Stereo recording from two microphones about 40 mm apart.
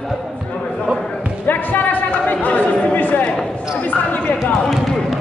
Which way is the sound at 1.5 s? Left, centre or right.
Left.